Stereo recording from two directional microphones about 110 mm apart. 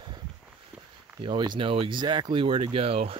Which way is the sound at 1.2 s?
45° right (ahead or behind).